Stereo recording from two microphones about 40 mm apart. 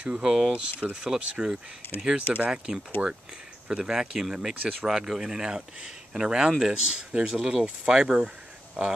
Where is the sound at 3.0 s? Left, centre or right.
Right.